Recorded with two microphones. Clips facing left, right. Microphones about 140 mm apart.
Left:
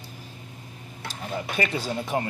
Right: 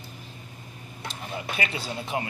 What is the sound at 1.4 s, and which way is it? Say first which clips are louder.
Speech: left 4 dB; 40° left (ahead or behind).